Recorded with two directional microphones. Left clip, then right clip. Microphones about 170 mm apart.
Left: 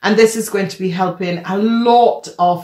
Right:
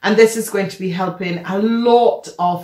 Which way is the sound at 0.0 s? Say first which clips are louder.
Even; 25° left (ahead or behind).